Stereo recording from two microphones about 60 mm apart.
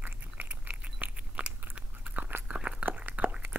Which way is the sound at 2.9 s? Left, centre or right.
Right.